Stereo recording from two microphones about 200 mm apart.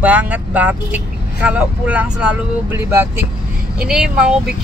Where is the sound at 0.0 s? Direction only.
10° right (ahead or behind).